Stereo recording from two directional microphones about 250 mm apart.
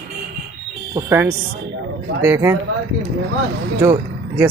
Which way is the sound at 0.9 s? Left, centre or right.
Centre.